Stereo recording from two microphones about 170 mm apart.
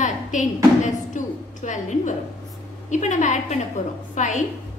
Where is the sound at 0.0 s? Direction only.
45° left (ahead or behind).